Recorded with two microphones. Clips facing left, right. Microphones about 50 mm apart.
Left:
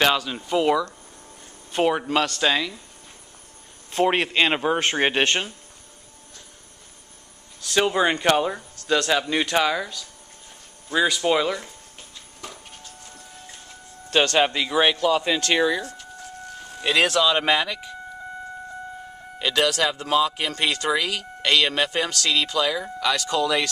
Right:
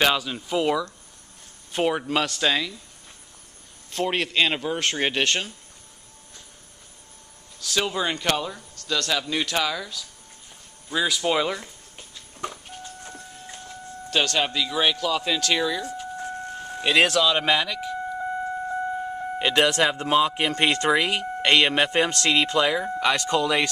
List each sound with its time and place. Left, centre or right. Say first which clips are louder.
0.0 s speech: left 1 dB; centre
3.9 s a man's voice: left 4 dB; left
7.6 s a man's voice: left 5 dB; centre
10.9 s speech: left 3 dB; centre
12.4 s music: right 6 dB; right
14.2 s a man's voice: left 5 dB; left
15.8 s a sound: right 4 dB; centre
16.2 s vehicle: right 6 dB; right
16.8 s speech: even; centre
19.3 s speech: right 1 dB; right